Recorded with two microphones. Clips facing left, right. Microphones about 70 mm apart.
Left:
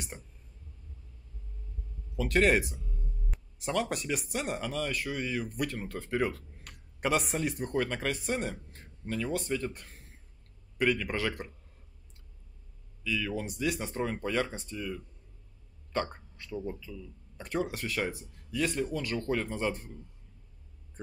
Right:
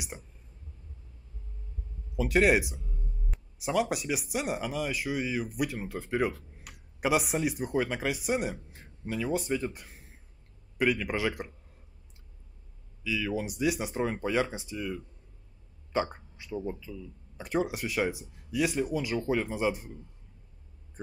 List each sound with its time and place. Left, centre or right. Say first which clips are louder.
2.1 s speech: right 2 dB; centre
13.0 s speech: right 2 dB; centre